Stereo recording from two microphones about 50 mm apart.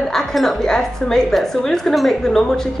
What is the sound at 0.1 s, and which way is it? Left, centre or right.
Speech, centre.